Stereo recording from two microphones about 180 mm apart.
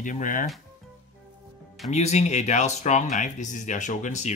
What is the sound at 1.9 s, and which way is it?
Speech, 40° left (ahead or behind).